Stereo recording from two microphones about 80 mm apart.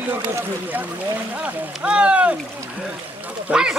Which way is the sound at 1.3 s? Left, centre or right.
Centre.